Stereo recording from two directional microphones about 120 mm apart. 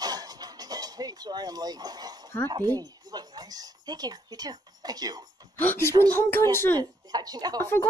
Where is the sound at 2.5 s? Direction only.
35° right (ahead or behind).